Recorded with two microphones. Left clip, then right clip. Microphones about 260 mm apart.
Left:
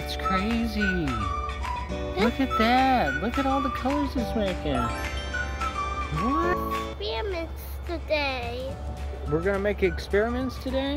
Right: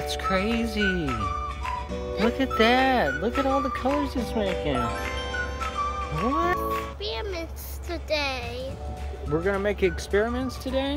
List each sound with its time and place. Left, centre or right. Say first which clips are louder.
0.0 s music: right 1 dB; centre
1.9 s speech: even; centre
6.6 s music: right 1 dB; centre
7.9 s speech: even; centre